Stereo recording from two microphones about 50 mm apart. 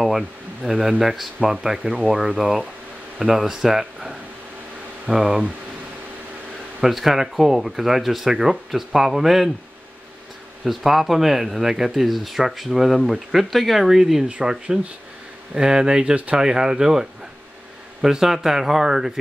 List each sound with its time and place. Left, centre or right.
0.0 s speech: centre
2.4 s speech: right
3.2 s speech: centre
6.8 s speech: centre
10.6 s speech: centre
14.2 s speech: centre